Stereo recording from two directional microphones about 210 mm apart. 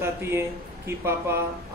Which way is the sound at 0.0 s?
10° right (ahead or behind).